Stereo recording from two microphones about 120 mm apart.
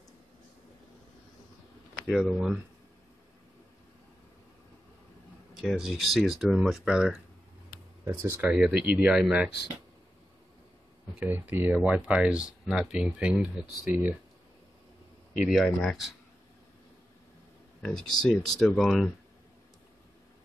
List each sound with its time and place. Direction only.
2.0 s speech: centre (ahead or behind)
5.6 s speech: centre (ahead or behind)
8.1 s speech: 20° right (ahead or behind)
11.1 s speech: 15° right (ahead or behind)
15.6 s speech: 5° left (ahead or behind)
17.8 s speech: 5° left (ahead or behind)